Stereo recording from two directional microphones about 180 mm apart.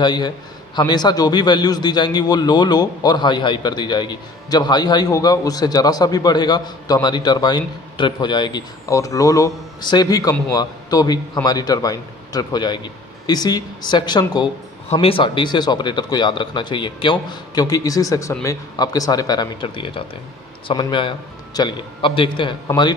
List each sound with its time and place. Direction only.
0.0 s a man's voice: 25° left (ahead or behind)